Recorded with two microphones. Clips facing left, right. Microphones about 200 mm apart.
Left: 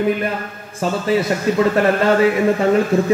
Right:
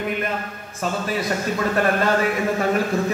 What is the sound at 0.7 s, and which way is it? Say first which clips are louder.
Speech: left 7 dB; 25° left (ahead or behind).